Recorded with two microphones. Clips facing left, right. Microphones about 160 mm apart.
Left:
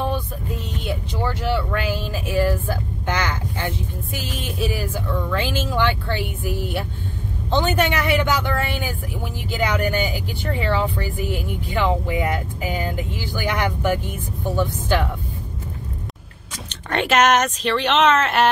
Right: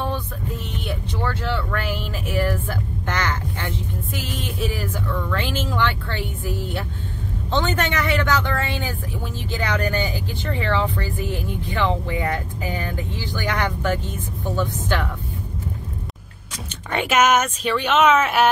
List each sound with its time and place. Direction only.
0.8 s speech: 10° left (ahead or behind)
3.1 s heart sounds: 15° left (ahead or behind)
4.5 s speech: 20° left (ahead or behind)
7.5 s speech: 10° left (ahead or behind)
16.6 s speech: 5° right (ahead or behind)